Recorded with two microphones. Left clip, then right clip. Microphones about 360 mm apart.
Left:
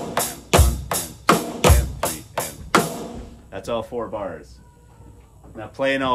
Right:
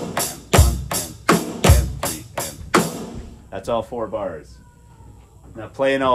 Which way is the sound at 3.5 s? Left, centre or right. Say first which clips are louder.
Right 3 dB; centre.